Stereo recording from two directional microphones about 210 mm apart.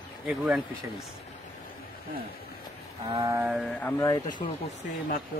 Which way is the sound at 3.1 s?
20° right (ahead or behind).